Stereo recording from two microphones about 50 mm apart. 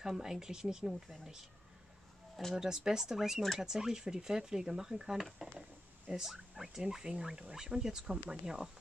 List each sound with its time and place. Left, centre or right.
0.0 s speech: centre
2.6 s speech: centre